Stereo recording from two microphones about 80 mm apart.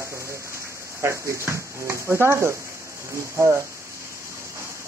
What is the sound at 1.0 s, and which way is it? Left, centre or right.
Speech, right.